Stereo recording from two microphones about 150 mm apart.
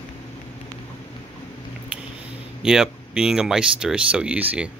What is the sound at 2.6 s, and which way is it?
Speech, 5° right (ahead or behind).